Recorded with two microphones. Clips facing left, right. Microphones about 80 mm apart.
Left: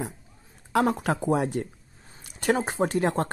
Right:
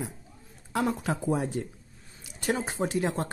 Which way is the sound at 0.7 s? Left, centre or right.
Left.